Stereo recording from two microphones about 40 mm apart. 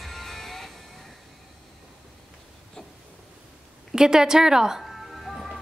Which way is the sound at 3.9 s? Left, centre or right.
Centre.